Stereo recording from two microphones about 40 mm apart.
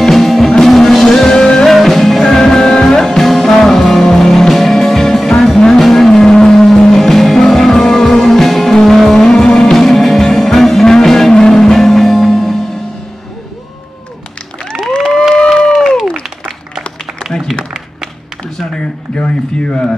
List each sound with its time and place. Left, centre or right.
0.0 s music: centre
1.2 s music: centre
1.7 s music: centre
2.2 s music: centre
3.0 s music: centre
9.8 s music: centre
14.7 s a sound: left
15.0 s a sound: centre
15.3 s crowd: centre
18.8 s a sound: left